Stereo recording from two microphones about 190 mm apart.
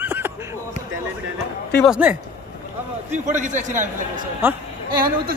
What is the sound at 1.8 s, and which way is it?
Speech, 5° right (ahead or behind).